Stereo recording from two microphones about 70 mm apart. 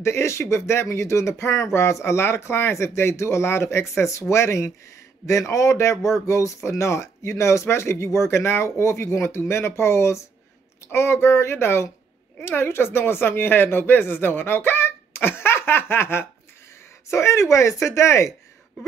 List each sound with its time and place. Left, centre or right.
0.0 s speech: left